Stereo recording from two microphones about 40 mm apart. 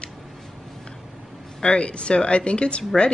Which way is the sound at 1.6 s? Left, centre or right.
Left.